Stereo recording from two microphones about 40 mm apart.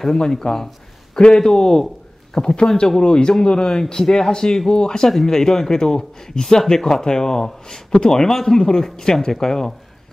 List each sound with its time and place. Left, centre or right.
0.0 s a man's voice: centre